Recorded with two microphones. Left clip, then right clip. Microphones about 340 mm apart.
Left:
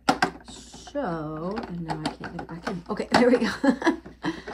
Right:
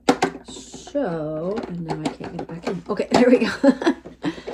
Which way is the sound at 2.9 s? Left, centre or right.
Centre.